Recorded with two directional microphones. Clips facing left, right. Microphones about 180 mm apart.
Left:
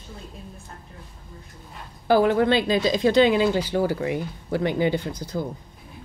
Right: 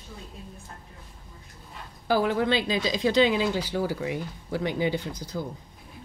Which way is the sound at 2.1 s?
60° left (ahead or behind).